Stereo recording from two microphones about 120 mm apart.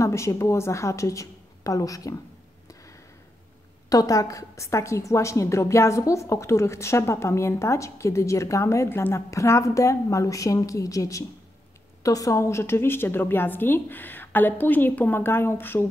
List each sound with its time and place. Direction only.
0.0 s a woman's voice: 25° left (ahead or behind)
3.9 s a woman's voice: 30° left (ahead or behind)